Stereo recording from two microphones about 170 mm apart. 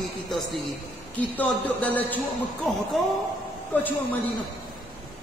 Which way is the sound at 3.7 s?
10° left (ahead or behind).